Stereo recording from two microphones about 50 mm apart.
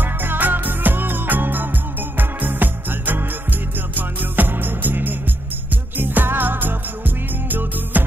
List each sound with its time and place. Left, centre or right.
0.0 s music: right